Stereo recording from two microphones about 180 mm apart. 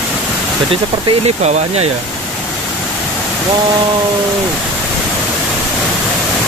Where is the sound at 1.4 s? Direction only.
35° right (ahead or behind).